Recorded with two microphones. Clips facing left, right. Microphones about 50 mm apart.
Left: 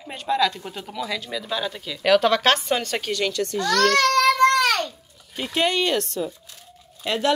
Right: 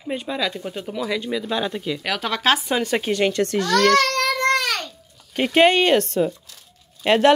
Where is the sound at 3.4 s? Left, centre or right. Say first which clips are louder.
Right 3 dB; right.